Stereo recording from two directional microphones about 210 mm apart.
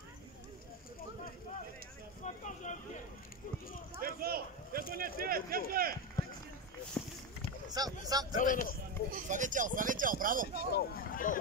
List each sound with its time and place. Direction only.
2.2 s vehicle: 35° left (ahead or behind)
4.0 s a sound: 45° right (ahead or behind)
4.9 s speech: 45° right (ahead or behind)
7.0 s a sound: 10° left (ahead or behind)
7.7 s speech: 20° right (ahead or behind)
8.4 s speech: 40° left (ahead or behind)
9.3 s speech: 35° right (ahead or behind)
10.5 s speech: 50° left (ahead or behind)